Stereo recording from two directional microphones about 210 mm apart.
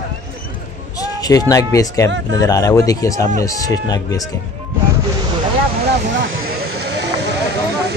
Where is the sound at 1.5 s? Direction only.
15° left (ahead or behind).